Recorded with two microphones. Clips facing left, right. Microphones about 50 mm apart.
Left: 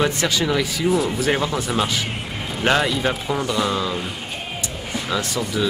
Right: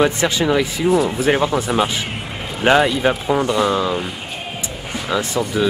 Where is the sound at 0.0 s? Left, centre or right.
Right.